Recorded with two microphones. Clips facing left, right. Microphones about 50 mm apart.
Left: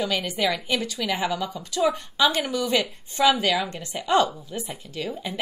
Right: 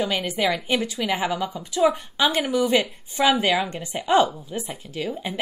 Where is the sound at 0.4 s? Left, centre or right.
Right.